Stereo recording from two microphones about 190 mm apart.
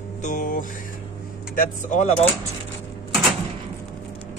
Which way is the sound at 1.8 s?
40° left (ahead or behind).